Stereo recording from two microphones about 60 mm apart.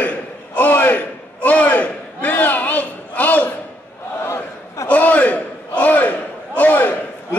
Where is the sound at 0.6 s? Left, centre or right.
Left.